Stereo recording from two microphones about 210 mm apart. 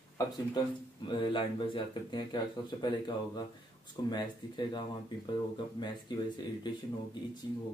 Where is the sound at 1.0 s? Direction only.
25° left (ahead or behind).